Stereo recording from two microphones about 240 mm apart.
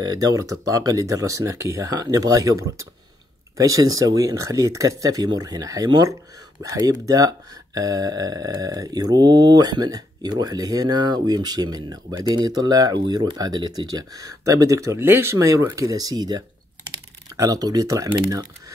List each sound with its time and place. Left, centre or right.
0.0 s speech: centre